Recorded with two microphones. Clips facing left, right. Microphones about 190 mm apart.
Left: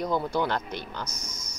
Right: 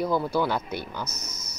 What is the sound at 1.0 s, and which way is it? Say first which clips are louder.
Speech: right 1 dB; 10° left (ahead or behind).